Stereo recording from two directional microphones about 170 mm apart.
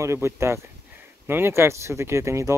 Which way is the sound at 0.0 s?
15° right (ahead or behind).